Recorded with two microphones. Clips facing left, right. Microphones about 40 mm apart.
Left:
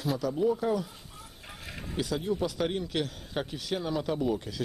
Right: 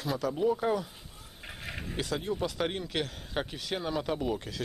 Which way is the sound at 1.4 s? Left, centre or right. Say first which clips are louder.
Right 3 dB; centre.